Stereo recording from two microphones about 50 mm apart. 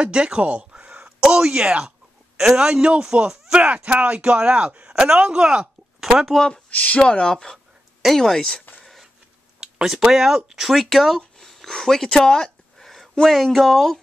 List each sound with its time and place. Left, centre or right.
0.0 s speech: right
2.3 s a man's voice: centre
6.3 s speech: centre
6.7 s speech: left
7.0 s speech: centre
7.5 s a sound: centre
8.2 s speech: centre
8.8 s printer: centre
9.6 s speech: centre